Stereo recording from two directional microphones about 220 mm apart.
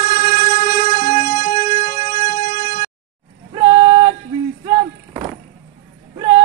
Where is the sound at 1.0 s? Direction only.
40° left (ahead or behind).